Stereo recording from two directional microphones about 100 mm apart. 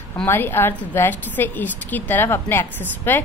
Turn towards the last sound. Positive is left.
turn(degrees=20)  # may be behind; listen again after turning